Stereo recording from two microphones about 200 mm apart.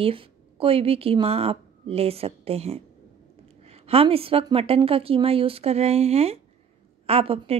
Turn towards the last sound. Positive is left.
turn(degrees=-30)  # may be behind; listen again after turning